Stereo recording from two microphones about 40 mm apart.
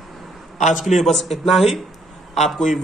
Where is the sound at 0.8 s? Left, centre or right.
Centre.